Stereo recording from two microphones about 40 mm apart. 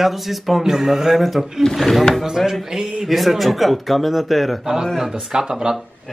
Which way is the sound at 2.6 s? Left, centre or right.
Centre.